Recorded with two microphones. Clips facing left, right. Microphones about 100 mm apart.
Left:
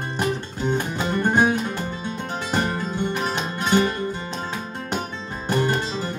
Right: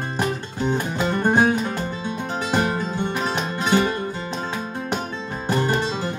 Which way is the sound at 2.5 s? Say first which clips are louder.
Right 2 dB; 10° right (ahead or behind).